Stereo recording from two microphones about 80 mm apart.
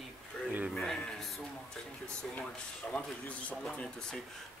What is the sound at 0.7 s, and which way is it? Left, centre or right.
Speech, centre.